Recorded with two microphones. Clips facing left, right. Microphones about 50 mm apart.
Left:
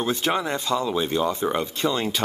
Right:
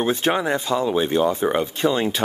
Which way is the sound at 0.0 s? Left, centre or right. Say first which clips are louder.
Right 3 dB; right.